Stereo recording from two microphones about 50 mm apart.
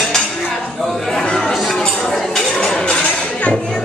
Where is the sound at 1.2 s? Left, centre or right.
Centre.